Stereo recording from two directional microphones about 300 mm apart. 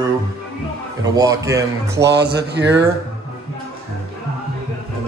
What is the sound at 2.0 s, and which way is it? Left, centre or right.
Speech, right.